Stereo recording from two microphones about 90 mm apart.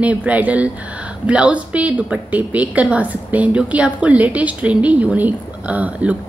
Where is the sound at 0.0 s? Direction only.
15° right (ahead or behind).